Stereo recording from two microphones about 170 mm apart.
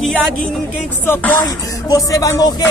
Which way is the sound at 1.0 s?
15° left (ahead or behind).